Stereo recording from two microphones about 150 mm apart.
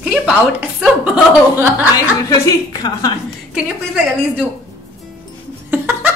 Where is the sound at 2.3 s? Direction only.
25° left (ahead or behind).